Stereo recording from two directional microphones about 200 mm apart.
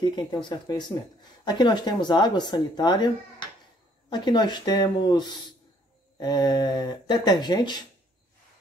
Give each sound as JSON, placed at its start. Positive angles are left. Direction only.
{"t": 0.0, "sound": "speech", "side_deg": 20}
{"t": 4.1, "sound": "speech", "side_deg": 20}